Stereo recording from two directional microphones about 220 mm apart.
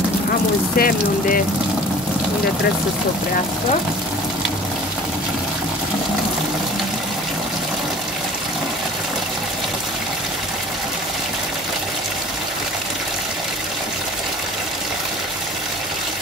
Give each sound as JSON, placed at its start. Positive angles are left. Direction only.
{"t": 0.7, "sound": "speech", "side_deg": 40}